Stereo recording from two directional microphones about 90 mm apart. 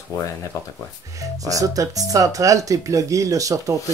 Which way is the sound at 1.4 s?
40° right (ahead or behind).